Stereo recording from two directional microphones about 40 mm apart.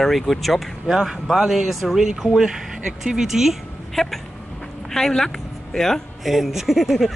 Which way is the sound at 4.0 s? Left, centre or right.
Centre.